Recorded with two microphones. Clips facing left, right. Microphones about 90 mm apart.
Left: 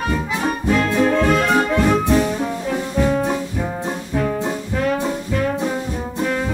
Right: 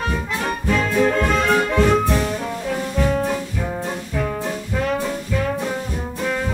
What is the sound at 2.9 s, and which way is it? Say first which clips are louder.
Brass instrument: left 2 dB; 10° left (ahead or behind).